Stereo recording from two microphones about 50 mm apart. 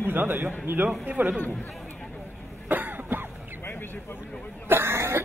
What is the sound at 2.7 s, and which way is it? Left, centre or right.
Cough, right.